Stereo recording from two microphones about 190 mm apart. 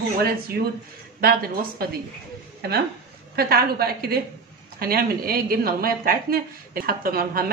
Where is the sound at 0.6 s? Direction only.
55° right (ahead or behind).